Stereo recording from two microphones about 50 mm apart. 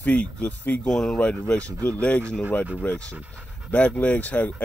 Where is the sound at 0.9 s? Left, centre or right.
Centre.